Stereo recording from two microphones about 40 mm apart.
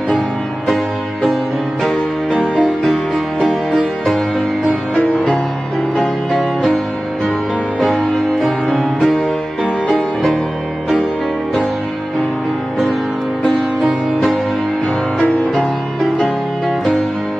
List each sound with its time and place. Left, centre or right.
8.7 s music: centre
13.7 s music: centre